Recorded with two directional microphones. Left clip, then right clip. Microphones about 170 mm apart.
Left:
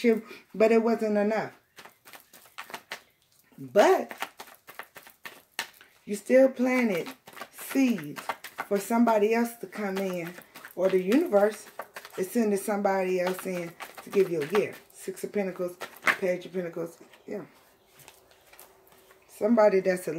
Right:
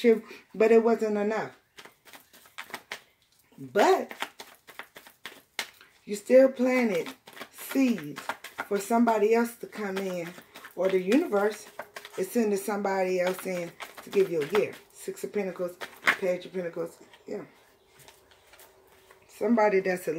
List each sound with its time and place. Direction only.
0.0 s speech: 10° left (ahead or behind)
3.7 s a sound: 15° left (ahead or behind)
6.0 s speech: 10° left (ahead or behind)
8.6 s speech: 15° left (ahead or behind)
19.3 s speech: 10° left (ahead or behind)